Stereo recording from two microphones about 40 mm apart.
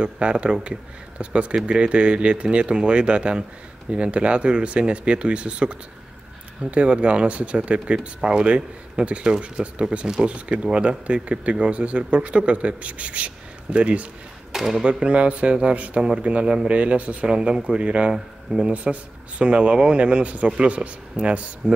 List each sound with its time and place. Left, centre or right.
0.0 s speech: right
14.5 s speech: centre
14.8 s speech: right
18.7 s speech: right